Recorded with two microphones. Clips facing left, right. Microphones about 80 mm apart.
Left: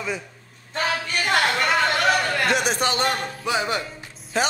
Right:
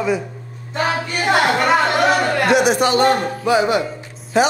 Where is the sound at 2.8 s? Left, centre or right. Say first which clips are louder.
Right 8 dB; right.